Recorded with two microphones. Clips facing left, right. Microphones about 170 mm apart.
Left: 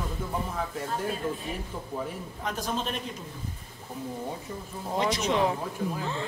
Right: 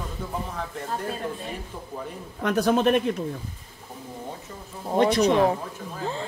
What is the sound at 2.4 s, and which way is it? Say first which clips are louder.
Speech: right 11 dB; 70° right (ahead or behind).